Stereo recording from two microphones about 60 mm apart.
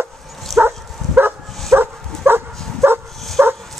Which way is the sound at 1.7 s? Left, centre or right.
Right.